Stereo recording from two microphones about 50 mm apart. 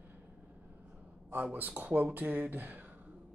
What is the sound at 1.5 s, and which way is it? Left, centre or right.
Speech, right.